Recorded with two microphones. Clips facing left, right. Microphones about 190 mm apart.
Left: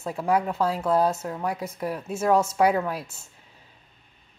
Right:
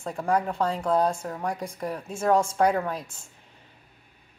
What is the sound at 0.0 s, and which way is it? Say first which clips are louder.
A woman's voice: left 1 dB; 5° left (ahead or behind).